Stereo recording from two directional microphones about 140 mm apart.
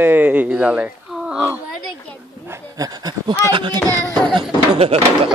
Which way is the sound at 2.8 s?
30° right (ahead or behind).